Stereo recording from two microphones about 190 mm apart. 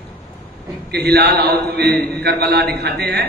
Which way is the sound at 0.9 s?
60° right (ahead or behind).